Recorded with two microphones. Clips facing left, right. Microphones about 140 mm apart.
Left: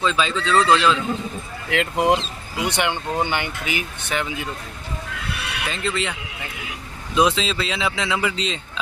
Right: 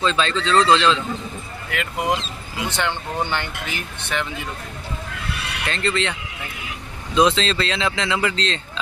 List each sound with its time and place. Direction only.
0.0 s speech: 5° left (ahead or behind)
1.7 s speech: 25° left (ahead or behind)
2.6 s speech: 15° left (ahead or behind)
5.7 s speech: 5° left (ahead or behind)
7.2 s speech: 10° left (ahead or behind)